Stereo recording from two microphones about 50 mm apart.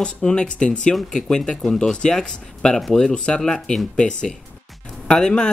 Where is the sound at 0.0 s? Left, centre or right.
Centre.